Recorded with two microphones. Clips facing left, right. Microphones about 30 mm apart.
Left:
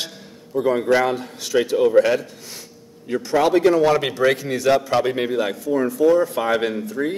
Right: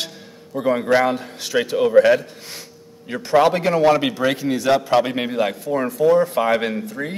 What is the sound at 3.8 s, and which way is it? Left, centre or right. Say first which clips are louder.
Speech: right 1 dB; centre.